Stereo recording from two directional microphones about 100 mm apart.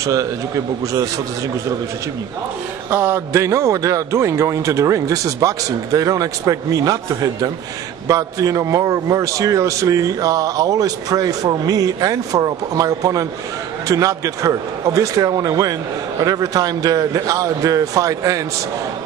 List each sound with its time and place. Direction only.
0.0 s a man's voice: 30° right (ahead or behind)
2.9 s a man's voice: 25° right (ahead or behind)